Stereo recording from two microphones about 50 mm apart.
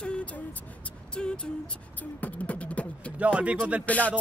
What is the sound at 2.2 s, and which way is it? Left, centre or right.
Beatboxing, left.